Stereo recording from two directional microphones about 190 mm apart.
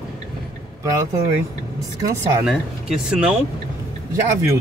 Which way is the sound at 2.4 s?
5° right (ahead or behind).